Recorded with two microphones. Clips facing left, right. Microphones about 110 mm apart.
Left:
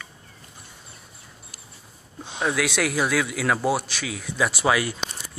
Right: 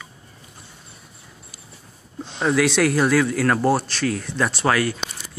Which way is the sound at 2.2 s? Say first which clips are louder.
Right 5 dB; 5° left (ahead or behind).